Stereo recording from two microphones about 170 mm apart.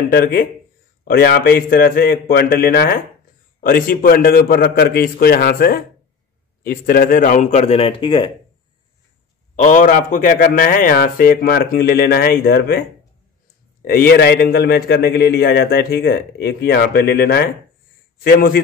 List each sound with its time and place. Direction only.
0.1 s a man's voice: 60° left (ahead or behind); by 8.3 s 30° left (ahead or behind)
9.6 s a man's voice: 50° left (ahead or behind)
13.8 s a man's voice: 65° left (ahead or behind)